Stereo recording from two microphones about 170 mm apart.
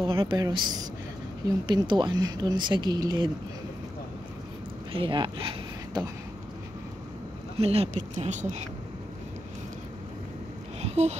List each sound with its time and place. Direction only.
0.0 s speech: 30° right (ahead or behind)
4.9 s speech: 30° right (ahead or behind)
7.5 s speech: 35° right (ahead or behind)
10.8 s a sound: 40° right (ahead or behind)